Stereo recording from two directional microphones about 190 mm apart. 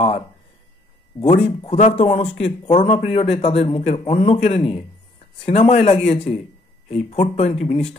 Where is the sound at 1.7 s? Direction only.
35° left (ahead or behind).